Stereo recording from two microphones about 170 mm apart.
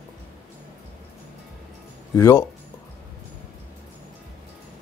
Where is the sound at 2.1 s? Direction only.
15° left (ahead or behind).